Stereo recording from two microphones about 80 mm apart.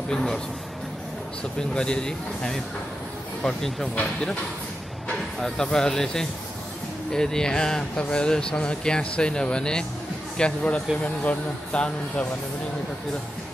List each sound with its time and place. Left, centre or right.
0.1 s speech: centre
1.6 s speech: centre